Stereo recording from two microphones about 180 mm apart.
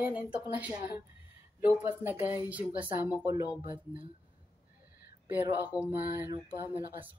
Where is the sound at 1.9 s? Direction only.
10° right (ahead or behind).